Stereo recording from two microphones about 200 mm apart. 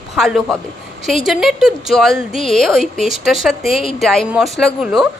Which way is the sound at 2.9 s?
35° right (ahead or behind).